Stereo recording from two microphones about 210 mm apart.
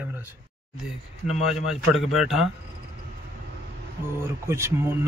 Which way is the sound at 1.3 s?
30° left (ahead or behind).